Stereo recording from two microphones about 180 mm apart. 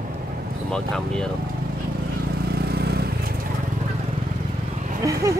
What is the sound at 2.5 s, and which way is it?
Vehicle, 60° right (ahead or behind).